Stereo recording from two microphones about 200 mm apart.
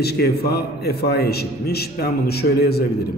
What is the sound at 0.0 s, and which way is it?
A man's voice, 55° left (ahead or behind).